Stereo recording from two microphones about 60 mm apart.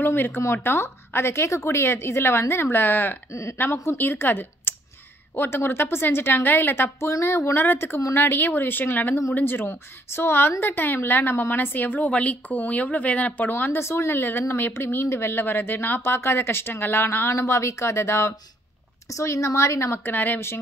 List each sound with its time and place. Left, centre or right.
0.0 s a woman's voice: left
3.3 s speech: left
3.5 s a woman's voice: left
7.1 s speech: left
7.6 s a woman's voice: left
13.5 s speech: left
19.0 s speech: left